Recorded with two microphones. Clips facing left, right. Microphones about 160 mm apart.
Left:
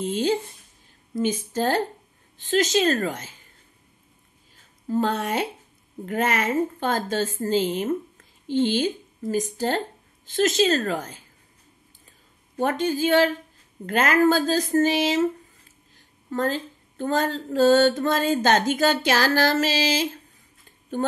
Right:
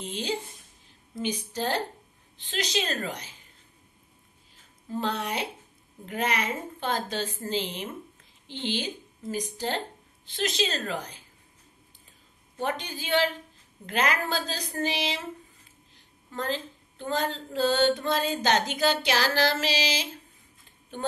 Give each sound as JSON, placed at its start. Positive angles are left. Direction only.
{"t": 0.0, "sound": "mantra", "side_deg": 45}
{"t": 4.8, "sound": "mantra", "side_deg": 45}
{"t": 8.5, "sound": "speech", "side_deg": 45}
{"t": 12.5, "sound": "mantra", "side_deg": 45}
{"t": 16.3, "sound": "mantra", "side_deg": 45}